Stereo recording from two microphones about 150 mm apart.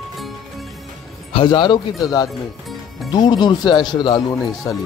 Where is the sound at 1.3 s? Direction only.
30° left (ahead or behind).